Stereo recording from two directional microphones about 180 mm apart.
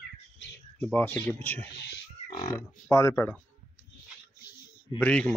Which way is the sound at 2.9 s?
15° left (ahead or behind).